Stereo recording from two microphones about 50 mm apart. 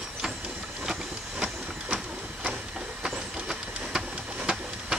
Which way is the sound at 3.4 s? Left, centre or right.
Centre.